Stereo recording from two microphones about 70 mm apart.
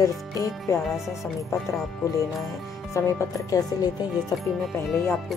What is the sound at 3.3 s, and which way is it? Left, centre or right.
Speech, left.